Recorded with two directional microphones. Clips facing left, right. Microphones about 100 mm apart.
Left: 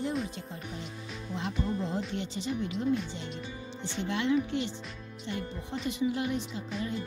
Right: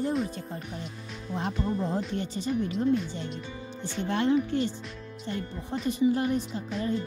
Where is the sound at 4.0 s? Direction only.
45° right (ahead or behind).